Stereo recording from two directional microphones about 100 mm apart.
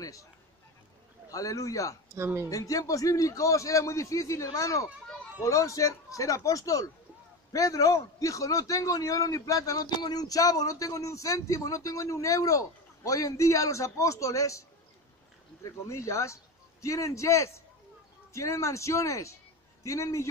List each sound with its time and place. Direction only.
0.0 s a sound: 35° left (ahead or behind)
1.3 s a man's voice: 35° left (ahead or behind)
2.1 s speech: 25° right (ahead or behind)
2.5 s a man's voice: 35° left (ahead or behind)
15.6 s a man's voice: 30° left (ahead or behind)